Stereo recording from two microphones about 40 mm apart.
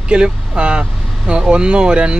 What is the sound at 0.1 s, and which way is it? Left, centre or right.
Speech, right.